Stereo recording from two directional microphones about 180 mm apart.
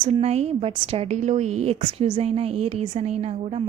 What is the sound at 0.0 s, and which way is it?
A woman's voice, 35° right (ahead or behind).